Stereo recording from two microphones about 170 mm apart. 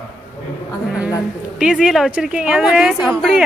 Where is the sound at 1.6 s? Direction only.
5° right (ahead or behind).